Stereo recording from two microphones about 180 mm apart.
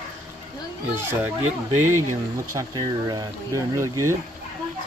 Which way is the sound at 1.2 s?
15° right (ahead or behind).